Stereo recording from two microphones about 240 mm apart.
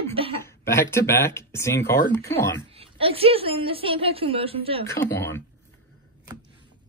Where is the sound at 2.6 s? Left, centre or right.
Right.